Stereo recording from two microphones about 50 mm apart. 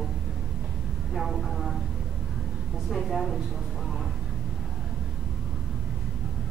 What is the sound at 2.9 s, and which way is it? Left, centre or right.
Speech, centre.